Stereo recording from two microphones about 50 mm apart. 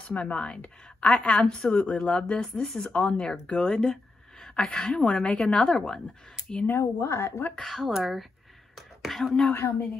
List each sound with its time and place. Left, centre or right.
0.1 s a woman's voice: left
6.8 s a woman's voice: left
7.6 s speech: centre